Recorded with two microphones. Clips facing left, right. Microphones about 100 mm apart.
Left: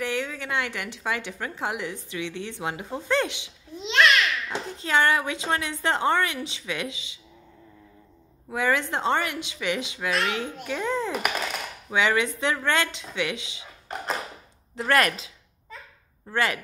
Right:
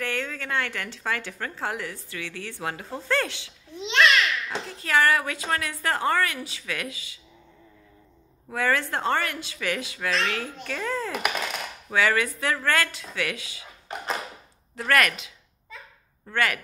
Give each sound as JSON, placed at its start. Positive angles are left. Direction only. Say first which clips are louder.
{"t": 0.0, "sound": "a woman's voice", "louder": "left 2 dB", "side_deg": 15}
{"t": 3.7, "sound": "babbling", "louder": "even", "side_deg": 0}
{"t": 4.5, "sound": "a woman's voice", "louder": "even", "side_deg": 20}
{"t": 8.5, "sound": "a woman's voice", "louder": "left 1 dB", "side_deg": 15}
{"t": 14.8, "sound": "a woman's voice", "louder": "left 1 dB", "side_deg": 30}
{"t": 16.3, "sound": "a woman's voice", "louder": "even", "side_deg": 25}